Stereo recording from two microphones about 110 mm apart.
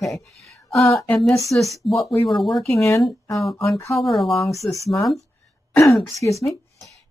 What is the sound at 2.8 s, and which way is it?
Speech, 25° left (ahead or behind).